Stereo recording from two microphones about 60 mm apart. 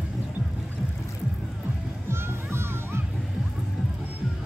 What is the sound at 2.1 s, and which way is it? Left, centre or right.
Music, right.